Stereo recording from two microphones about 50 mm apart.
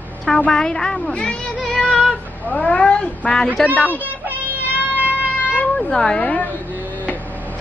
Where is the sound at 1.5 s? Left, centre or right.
Centre.